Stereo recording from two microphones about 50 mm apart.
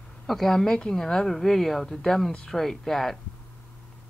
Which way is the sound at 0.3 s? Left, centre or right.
Centre.